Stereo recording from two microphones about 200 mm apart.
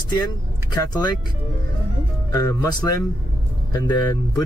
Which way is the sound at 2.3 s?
15° left (ahead or behind).